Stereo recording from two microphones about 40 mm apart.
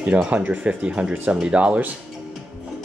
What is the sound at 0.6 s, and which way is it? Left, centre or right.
Speech, right.